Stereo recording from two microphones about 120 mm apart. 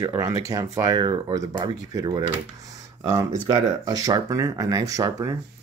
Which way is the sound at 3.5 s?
35° right (ahead or behind).